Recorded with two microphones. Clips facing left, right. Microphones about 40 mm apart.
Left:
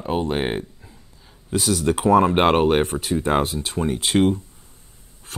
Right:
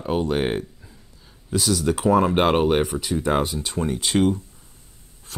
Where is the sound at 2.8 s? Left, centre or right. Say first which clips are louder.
Left 1 dB; left.